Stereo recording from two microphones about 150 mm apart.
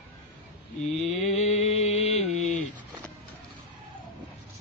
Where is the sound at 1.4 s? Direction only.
45° left (ahead or behind).